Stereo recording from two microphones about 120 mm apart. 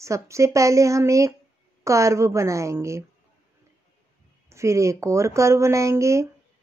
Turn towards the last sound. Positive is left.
turn(degrees=-25)  # may be behind; listen again after turning